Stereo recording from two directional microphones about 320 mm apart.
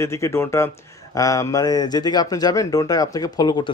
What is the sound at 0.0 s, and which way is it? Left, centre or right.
Speech, centre.